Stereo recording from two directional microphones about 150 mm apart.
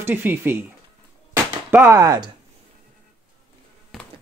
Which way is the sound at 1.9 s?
25° right (ahead or behind).